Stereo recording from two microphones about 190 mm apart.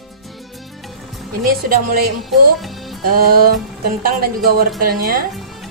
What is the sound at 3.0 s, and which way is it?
A woman's voice, 50° right (ahead or behind).